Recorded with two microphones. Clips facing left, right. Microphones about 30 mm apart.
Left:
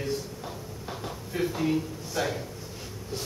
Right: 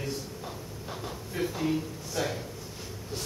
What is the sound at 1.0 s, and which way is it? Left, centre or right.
Speech, centre.